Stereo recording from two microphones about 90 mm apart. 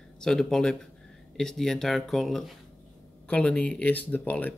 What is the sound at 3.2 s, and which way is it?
Speech, 15° left (ahead or behind).